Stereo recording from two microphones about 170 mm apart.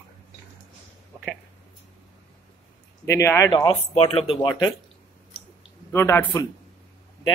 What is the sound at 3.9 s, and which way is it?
Speech, 35° left (ahead or behind).